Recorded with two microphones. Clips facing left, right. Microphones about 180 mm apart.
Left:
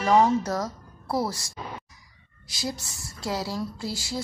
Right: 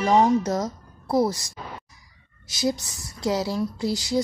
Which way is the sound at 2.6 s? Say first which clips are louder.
Right 8 dB; 20° right (ahead or behind).